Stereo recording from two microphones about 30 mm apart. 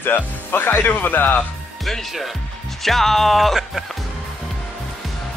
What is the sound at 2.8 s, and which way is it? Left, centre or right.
Speech, centre.